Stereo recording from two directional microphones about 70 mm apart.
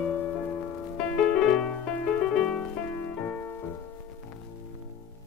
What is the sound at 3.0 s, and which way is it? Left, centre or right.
Music, centre.